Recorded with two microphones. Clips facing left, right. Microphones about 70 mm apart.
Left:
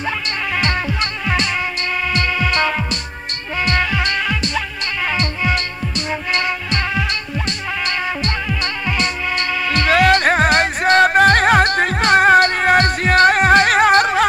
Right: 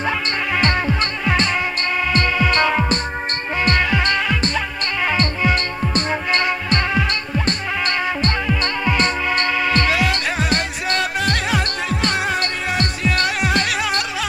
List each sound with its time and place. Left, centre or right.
3.6 s music: right
5.9 s music: right
9.8 s music: left